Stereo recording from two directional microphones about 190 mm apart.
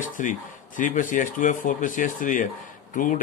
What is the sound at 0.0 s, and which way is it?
Speech, 45° left (ahead or behind).